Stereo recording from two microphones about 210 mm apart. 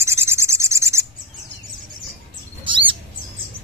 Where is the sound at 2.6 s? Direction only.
25° right (ahead or behind).